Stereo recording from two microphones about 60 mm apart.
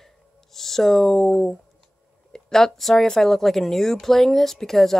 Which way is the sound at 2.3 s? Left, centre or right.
Centre.